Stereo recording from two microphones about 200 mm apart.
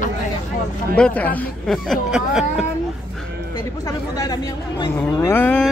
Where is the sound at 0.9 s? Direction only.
5° left (ahead or behind).